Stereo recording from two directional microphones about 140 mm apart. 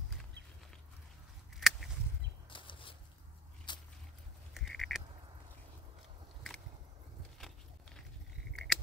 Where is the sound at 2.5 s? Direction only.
35° left (ahead or behind).